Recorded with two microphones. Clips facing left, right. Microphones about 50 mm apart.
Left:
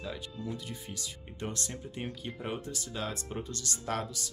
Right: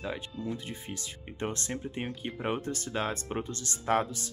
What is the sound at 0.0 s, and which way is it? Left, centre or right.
Speech, right.